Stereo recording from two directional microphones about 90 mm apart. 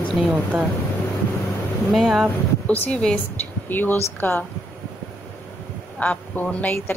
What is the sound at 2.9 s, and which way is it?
Speech, 10° left (ahead or behind).